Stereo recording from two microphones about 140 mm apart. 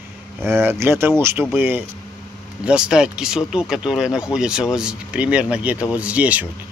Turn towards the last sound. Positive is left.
turn(degrees=-10)  # may be behind; listen again after turning